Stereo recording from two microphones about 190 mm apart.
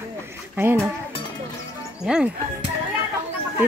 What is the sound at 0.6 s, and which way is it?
Speech, 10° right (ahead or behind).